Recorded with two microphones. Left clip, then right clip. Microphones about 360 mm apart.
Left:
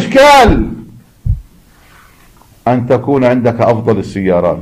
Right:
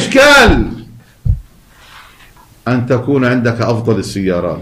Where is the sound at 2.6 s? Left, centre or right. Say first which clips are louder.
Left 4 dB; centre.